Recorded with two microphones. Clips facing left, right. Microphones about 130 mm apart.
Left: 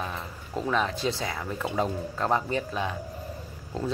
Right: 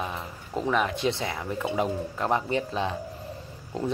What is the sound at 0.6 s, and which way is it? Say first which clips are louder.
Speech: right 2 dB; 15° right (ahead or behind).